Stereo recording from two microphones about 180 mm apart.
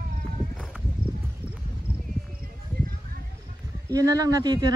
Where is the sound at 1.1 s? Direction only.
20° right (ahead or behind).